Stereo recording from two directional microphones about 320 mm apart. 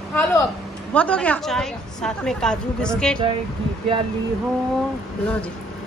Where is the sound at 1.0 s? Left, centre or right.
Centre.